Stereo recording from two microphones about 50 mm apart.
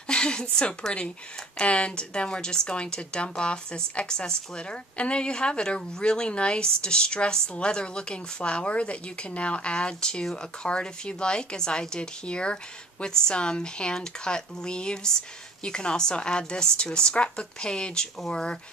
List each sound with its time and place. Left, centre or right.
0.1 s a woman's voice: centre